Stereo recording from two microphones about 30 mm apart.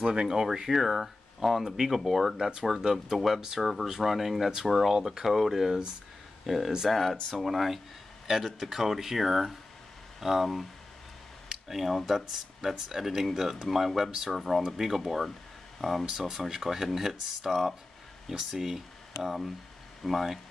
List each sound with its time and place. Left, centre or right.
0.0 s speech: right
0.3 s speech: centre
0.7 s speech: centre
3.8 s speech: centre
6.9 s speech: centre
11.7 s speech: centre
16.1 s speech: centre
18.3 s speech: centre
20.0 s speech: centre